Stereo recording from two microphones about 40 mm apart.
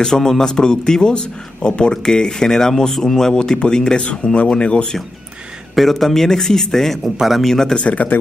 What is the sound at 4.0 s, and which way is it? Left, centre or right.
Speech, left.